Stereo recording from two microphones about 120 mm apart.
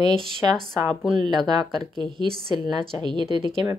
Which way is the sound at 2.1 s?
40° right (ahead or behind).